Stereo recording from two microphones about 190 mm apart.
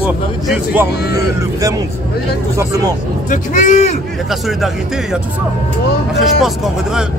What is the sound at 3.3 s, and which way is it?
Speech, 40° left (ahead or behind).